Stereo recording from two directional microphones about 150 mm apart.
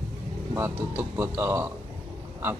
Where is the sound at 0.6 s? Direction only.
15° right (ahead or behind).